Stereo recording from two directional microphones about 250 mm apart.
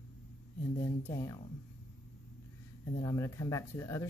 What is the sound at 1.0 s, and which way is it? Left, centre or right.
Speech, centre.